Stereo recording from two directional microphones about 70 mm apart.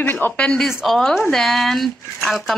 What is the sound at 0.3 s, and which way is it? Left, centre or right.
Speech, centre.